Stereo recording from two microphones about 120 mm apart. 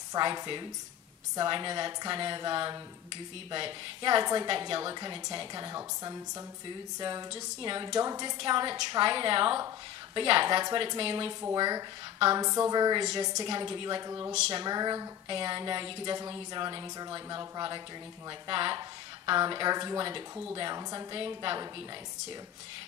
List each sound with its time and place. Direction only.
0.1 s a woman's voice: 35° right (ahead or behind)